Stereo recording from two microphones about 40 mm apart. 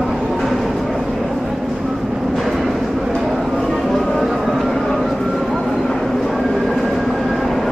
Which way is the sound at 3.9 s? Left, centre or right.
Centre.